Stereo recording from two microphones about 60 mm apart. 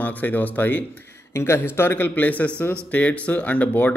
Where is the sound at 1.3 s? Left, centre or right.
Left.